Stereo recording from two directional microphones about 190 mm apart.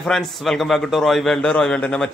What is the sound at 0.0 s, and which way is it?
A man's voice, centre (ahead or behind).